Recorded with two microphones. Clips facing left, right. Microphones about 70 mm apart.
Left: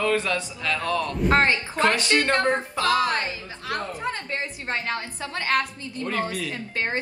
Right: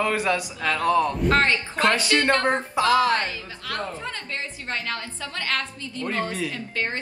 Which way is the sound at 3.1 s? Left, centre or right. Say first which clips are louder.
Right 3 dB; left.